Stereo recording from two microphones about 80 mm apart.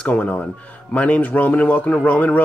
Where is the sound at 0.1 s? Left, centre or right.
Centre.